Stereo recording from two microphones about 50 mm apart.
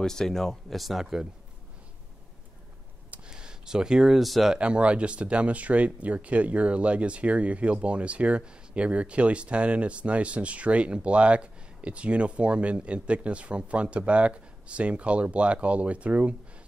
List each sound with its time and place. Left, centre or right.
0.0 s speech: centre
3.3 s a sound: centre
4.2 s speech: centre
4.6 s speech: right